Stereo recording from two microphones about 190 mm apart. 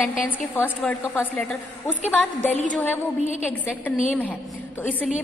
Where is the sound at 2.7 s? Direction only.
10° left (ahead or behind).